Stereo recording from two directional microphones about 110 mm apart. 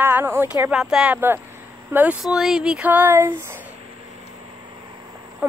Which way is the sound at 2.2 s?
5° right (ahead or behind).